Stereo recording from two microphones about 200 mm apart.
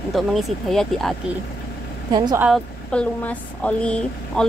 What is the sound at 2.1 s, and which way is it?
Speech, 20° right (ahead or behind).